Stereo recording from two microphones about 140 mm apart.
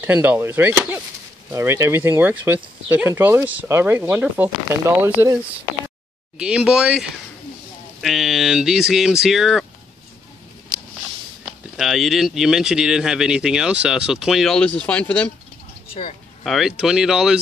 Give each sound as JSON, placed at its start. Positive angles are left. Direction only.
{"t": 0.0, "sound": "speech", "side_deg": -15}
{"t": 6.3, "sound": "speech", "side_deg": -5}
{"t": 11.4, "sound": "speech", "side_deg": 0}
{"t": 15.9, "sound": "speech", "side_deg": 45}
{"t": 16.4, "sound": "speech", "side_deg": 0}